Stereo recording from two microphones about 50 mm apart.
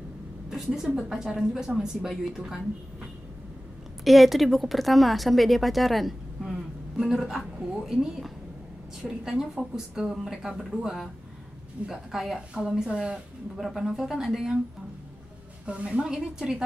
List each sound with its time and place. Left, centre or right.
0.5 s a sound: centre
0.9 s a woman's voice: centre
4.0 s a woman's voice: centre
11.9 s a woman's voice: centre
13.6 s a woman's voice: centre
15.6 s a woman's voice: right